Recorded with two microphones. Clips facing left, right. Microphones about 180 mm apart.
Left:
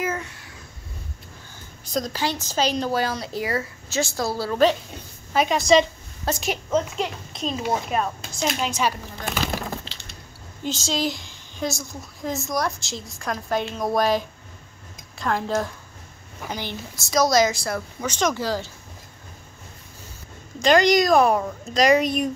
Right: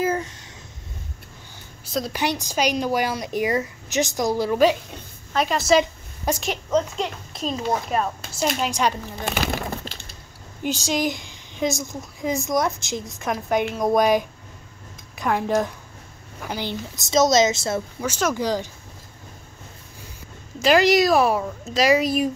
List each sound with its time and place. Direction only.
0.0 s a sound: 30° right (ahead or behind)
1.9 s a woman's voice: 5° right (ahead or behind)
2.1 s a woman's voice: 15° right (ahead or behind)
5.3 s a woman's voice: centre (ahead or behind)
6.4 s speech: 5° left (ahead or behind)
8.6 s a woman's voice: 15° right (ahead or behind)
10.6 s a woman's voice: 15° right (ahead or behind)
18.0 s a woman's voice: 10° right (ahead or behind)
20.5 s speech: 5° right (ahead or behind)